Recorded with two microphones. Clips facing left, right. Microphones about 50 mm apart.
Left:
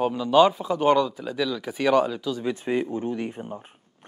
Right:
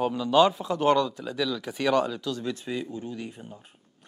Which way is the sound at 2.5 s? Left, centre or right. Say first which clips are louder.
Left 6 dB; left.